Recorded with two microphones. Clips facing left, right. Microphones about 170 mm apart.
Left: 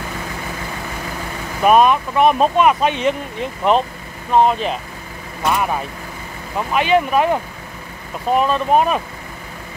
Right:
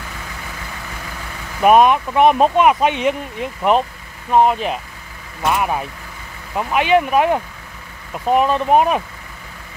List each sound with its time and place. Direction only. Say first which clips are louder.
1.6 s speech: right 1 dB; 15° right (ahead or behind)